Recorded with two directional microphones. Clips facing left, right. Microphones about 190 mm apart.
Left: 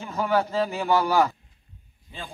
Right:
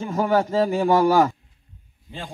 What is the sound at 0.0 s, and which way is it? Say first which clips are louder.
Speech: right 4 dB; 45° right (ahead or behind).